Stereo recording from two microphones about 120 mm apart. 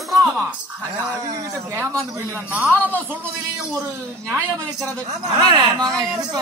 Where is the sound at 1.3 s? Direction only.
25° right (ahead or behind).